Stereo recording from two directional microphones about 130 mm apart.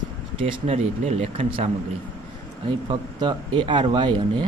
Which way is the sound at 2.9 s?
35° right (ahead or behind).